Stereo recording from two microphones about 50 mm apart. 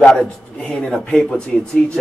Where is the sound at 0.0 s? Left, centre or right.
Centre.